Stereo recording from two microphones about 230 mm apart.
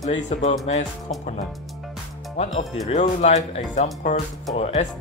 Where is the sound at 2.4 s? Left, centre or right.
Left.